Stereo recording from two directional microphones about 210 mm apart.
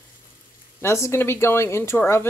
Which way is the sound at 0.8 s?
10° left (ahead or behind).